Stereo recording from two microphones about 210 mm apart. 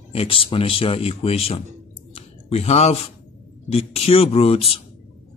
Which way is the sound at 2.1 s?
30° left (ahead or behind).